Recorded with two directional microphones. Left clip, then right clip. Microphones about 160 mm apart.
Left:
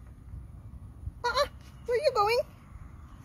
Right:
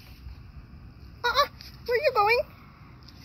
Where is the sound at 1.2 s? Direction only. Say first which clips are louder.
Right 4 dB; 15° left (ahead or behind).